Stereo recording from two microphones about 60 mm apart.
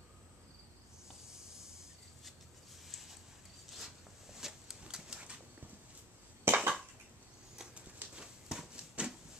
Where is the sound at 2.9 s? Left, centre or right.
Centre.